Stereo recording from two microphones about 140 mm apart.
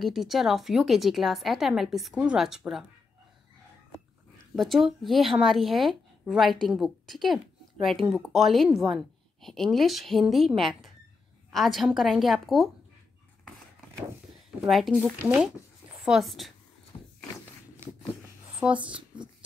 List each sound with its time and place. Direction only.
0.0 s a woman's voice: centre (ahead or behind)
4.6 s a woman's voice: centre (ahead or behind)
14.7 s a woman's voice: centre (ahead or behind)
16.9 s walk: 30° left (ahead or behind)
18.8 s speech: 35° right (ahead or behind)